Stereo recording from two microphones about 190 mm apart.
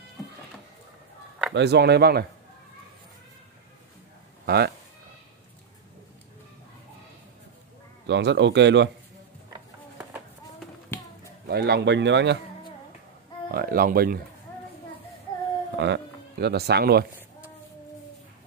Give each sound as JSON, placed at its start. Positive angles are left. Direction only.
{"t": 1.5, "sound": "speech", "side_deg": -60}
{"t": 4.5, "sound": "speech", "side_deg": -55}
{"t": 8.1, "sound": "a man's voice", "side_deg": -65}
{"t": 10.9, "sound": "a sound", "side_deg": 10}
{"t": 11.4, "sound": "speech", "side_deg": -60}
{"t": 13.5, "sound": "speech", "side_deg": -50}
{"t": 15.8, "sound": "speech", "side_deg": -60}